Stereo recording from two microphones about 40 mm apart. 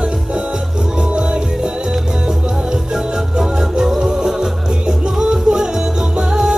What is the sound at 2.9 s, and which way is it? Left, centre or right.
Music, centre.